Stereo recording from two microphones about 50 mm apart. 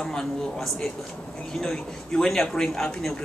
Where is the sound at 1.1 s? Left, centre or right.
Left.